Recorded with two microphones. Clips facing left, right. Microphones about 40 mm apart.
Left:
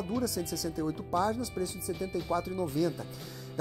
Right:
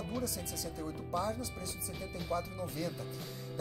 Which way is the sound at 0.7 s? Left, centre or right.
Left.